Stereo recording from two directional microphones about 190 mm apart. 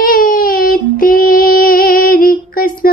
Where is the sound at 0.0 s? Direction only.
45° left (ahead or behind).